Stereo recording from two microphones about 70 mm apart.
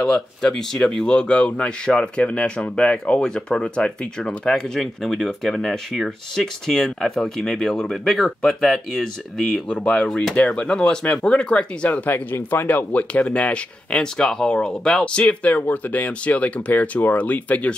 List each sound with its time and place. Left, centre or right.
0.0 s speech: centre